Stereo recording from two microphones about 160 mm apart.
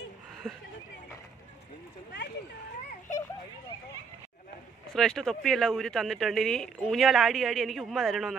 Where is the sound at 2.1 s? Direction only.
90° left.